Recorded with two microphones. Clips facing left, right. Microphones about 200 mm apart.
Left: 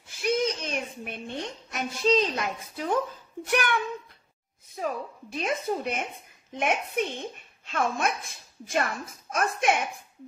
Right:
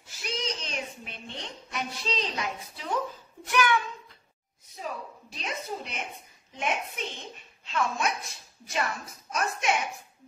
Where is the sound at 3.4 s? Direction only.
60° left (ahead or behind).